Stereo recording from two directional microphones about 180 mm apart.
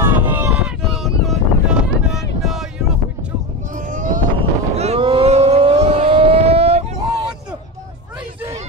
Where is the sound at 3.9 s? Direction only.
50° right (ahead or behind).